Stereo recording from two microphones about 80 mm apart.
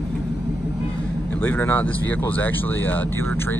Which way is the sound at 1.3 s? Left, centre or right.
Left.